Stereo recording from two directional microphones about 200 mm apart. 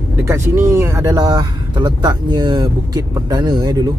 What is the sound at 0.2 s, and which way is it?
Speech, 15° right (ahead or behind).